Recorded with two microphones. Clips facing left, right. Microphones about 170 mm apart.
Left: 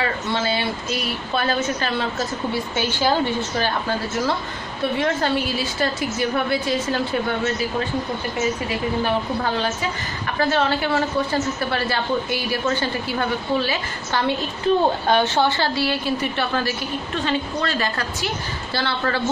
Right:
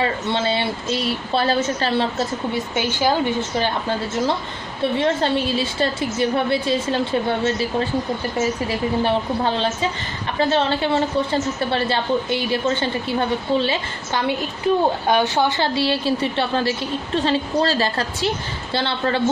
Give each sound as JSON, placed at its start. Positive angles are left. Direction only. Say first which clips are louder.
{"t": 0.0, "sound": "a woman's voice", "louder": "right 2 dB", "side_deg": -25}
{"t": 4.9, "sound": "a woman's voice", "louder": "right 2 dB", "side_deg": -25}
{"t": 14.7, "sound": "a woman's voice", "louder": "even", "side_deg": -10}